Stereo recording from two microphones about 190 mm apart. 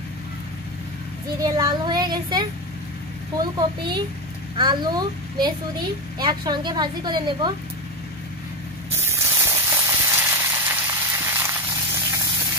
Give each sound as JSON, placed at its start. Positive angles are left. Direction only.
{"t": 1.4, "sound": "speech", "side_deg": -20}
{"t": 3.5, "sound": "speech", "side_deg": -25}
{"t": 8.9, "sound": "sizzle", "side_deg": -15}